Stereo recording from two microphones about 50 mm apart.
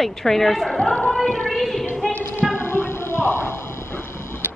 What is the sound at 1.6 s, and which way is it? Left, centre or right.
Speech, centre.